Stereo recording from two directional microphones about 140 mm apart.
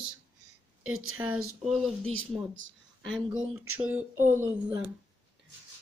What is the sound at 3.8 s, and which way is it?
Speech, 10° right (ahead or behind).